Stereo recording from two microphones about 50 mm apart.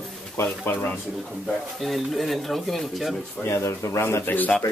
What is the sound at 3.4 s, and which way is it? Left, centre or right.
Speech, left.